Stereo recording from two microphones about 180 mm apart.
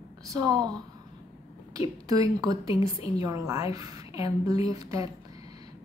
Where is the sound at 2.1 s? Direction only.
20° right (ahead or behind).